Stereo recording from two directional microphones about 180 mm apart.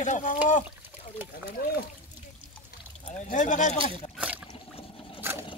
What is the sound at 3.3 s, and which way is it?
Speech, 45° left (ahead or behind).